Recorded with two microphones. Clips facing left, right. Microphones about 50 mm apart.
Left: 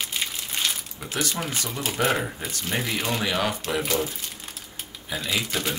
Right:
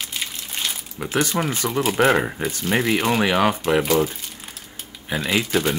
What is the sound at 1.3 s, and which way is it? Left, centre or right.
Speech, centre.